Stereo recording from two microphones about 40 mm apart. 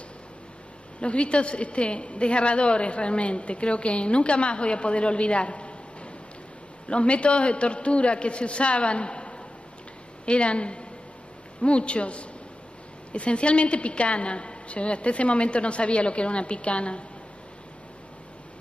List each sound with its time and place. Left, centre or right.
1.0 s a woman's voice: left
6.9 s a woman's voice: left